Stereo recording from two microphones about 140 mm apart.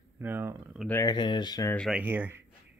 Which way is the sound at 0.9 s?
20° left (ahead or behind).